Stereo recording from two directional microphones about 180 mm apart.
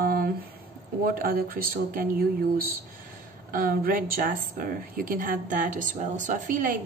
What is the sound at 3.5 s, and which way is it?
Speech, 55° right (ahead or behind).